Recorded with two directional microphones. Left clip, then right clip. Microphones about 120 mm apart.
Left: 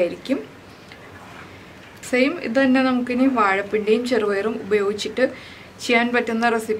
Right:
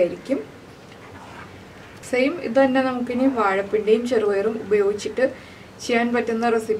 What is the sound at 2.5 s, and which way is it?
A woman's voice, 20° left (ahead or behind).